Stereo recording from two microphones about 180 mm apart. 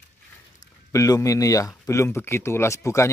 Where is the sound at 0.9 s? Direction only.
20° left (ahead or behind).